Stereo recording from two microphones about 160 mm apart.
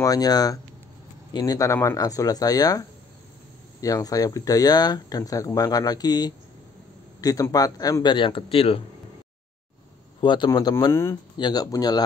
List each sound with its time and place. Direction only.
0.0 s speech: 25° left (ahead or behind)
10.2 s speech: 30° left (ahead or behind)